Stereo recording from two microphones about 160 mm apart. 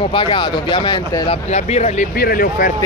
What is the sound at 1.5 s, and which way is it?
Speech, 45° left (ahead or behind).